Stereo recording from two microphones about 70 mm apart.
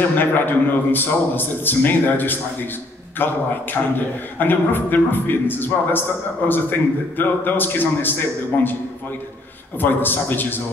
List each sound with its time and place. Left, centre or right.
0.2 s a man's voice: left
9.8 s a man's voice: left